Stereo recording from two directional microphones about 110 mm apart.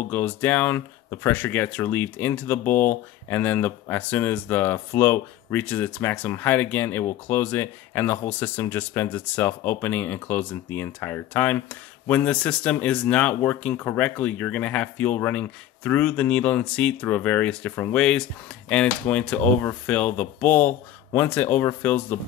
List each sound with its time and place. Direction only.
0.1 s speech: 15° left (ahead or behind)